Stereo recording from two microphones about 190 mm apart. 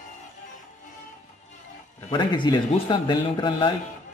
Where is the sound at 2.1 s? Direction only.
25° left (ahead or behind).